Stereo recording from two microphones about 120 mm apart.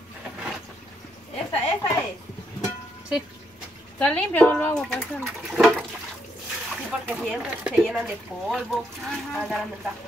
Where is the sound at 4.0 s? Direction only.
10° left (ahead or behind).